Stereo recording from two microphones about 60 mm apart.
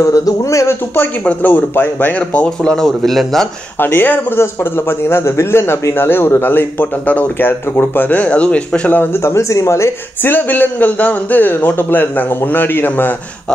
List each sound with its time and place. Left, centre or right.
0.0 s speech: left
1.2 s speech: left
3.0 s a man's voice: centre
3.8 s a man's voice: left; by 8.9 s centre
8.9 s a man's voice: left
9.2 s speech: left
10.3 s a man's voice: left